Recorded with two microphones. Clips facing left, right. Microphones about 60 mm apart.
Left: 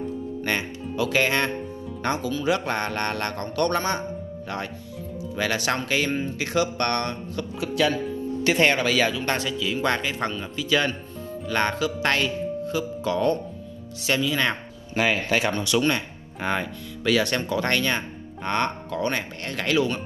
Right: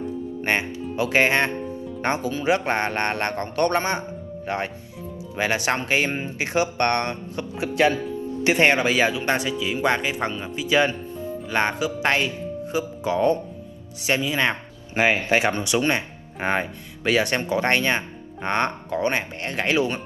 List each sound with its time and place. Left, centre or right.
0.5 s speech: right